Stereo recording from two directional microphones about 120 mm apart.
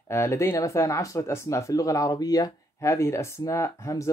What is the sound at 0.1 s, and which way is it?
Speech, 25° left (ahead or behind).